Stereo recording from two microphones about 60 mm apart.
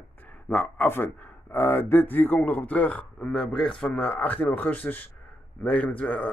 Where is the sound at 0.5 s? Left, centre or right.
Left; by 4.0 s centre.